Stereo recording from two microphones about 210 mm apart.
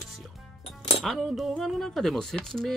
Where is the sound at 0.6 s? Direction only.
30° left (ahead or behind).